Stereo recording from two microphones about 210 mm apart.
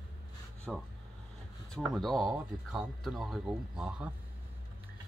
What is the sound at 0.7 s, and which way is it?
Speech, centre (ahead or behind).